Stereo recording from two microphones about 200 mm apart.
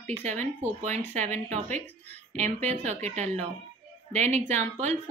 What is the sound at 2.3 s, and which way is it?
A woman's voice, 35° right (ahead or behind).